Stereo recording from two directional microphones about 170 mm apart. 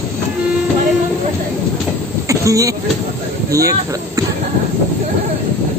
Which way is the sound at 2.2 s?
20° right (ahead or behind).